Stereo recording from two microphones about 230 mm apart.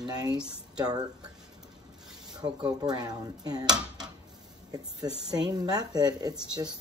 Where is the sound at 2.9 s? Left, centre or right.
Centre.